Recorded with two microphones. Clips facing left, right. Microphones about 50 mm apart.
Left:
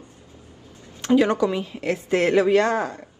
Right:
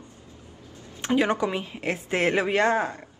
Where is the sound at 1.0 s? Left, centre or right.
Right.